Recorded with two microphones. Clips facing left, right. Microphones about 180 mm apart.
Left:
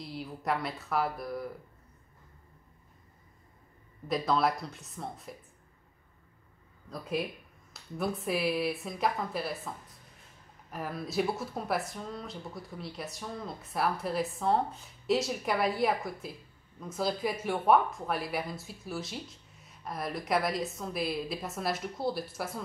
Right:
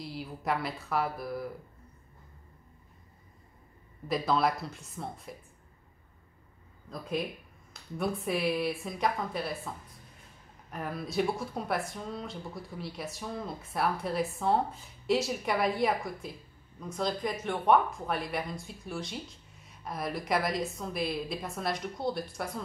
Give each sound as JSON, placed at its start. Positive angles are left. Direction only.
{"t": 0.0, "sound": "speech", "side_deg": 0}
{"t": 4.1, "sound": "speech", "side_deg": 0}
{"t": 6.9, "sound": "speech", "side_deg": 0}